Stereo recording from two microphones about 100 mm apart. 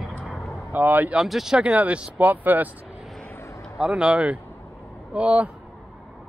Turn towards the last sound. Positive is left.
turn(degrees=-10)  # may be behind; listen again after turning